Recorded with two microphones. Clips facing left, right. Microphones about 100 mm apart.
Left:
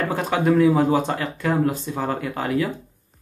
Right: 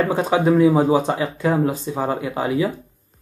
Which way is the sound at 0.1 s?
10° right (ahead or behind).